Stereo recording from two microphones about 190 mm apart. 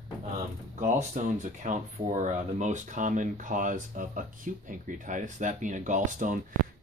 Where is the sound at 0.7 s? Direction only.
40° right (ahead or behind).